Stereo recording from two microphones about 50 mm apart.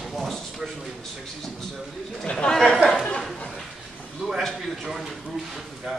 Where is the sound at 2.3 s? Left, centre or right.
Centre.